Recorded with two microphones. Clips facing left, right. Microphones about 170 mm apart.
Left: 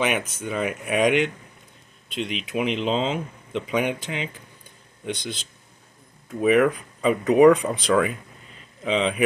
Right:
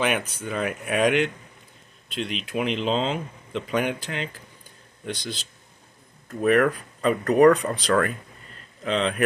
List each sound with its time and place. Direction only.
0.0 s speech: centre (ahead or behind)